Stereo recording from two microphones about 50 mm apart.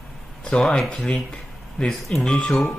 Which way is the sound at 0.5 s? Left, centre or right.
Centre.